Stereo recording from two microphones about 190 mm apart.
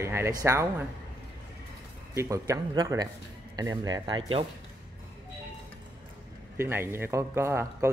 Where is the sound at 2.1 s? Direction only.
15° right (ahead or behind).